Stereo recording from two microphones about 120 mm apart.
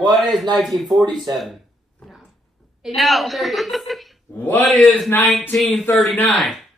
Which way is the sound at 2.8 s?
Centre (ahead or behind).